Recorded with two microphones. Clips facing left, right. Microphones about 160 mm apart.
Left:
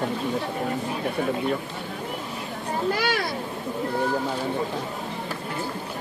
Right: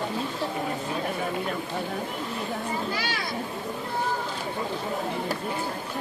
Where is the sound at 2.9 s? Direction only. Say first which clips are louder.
Left 6 dB; 55° left (ahead or behind).